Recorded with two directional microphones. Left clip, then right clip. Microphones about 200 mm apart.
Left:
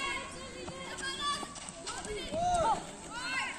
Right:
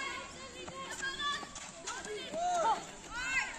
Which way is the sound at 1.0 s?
25° left (ahead or behind).